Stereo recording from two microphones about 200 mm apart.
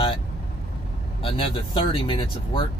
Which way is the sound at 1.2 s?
25° left (ahead or behind).